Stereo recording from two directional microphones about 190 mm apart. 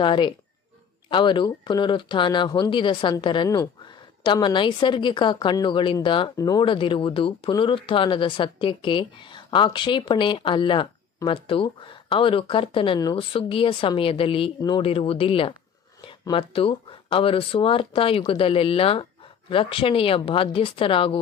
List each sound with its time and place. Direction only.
0.0 s speech: 25° left (ahead or behind)